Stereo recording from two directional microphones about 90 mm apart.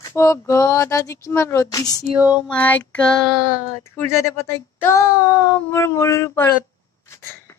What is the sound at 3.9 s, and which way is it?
A woman's voice, 30° left (ahead or behind).